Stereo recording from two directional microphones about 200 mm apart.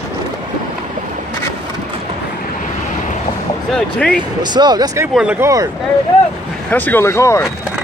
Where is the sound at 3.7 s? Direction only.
5° left (ahead or behind).